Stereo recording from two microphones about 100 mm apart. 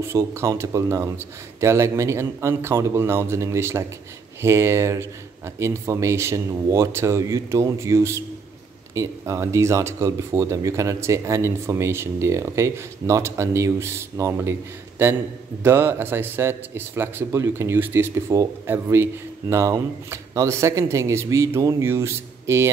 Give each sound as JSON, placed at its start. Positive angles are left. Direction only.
{"t": 0.0, "sound": "speech", "side_deg": -30}
{"t": 15.6, "sound": "speech", "side_deg": -25}